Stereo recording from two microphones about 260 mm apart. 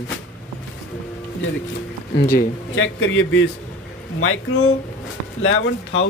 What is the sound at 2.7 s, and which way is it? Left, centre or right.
Speech, left.